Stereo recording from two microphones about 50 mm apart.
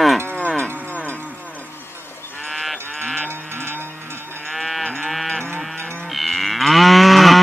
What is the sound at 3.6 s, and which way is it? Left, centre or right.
Cattle, right.